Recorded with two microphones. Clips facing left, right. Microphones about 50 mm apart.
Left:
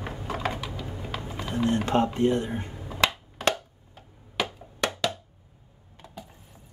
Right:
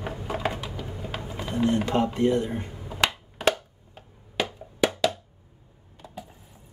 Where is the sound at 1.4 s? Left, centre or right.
Centre.